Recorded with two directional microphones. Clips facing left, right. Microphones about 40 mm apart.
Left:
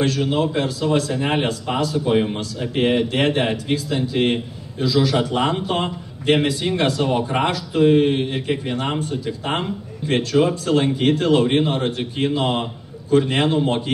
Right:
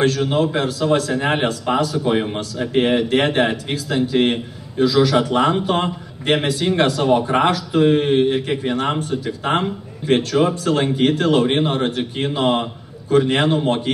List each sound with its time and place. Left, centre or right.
0.0 s a man's voice: right
1.2 s a man's voice: right